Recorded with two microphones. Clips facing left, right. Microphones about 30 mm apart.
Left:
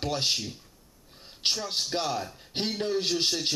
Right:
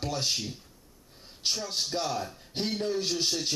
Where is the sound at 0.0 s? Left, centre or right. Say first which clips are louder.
Left 2 dB; left.